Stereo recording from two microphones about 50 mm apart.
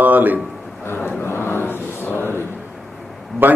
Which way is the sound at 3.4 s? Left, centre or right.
Right.